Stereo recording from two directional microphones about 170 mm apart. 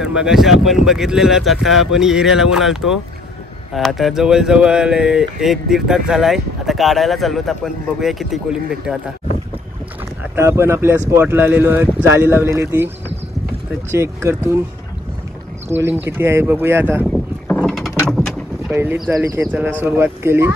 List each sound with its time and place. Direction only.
0.0 s speech: 5° right (ahead or behind)
10.3 s speech: 15° right (ahead or behind)
13.9 s speech: 15° right (ahead or behind)
15.7 s speech: 10° right (ahead or behind)
17.0 s mechanisms: 5° left (ahead or behind)
18.1 s a sound: centre (ahead or behind)
18.8 s speech: 15° right (ahead or behind)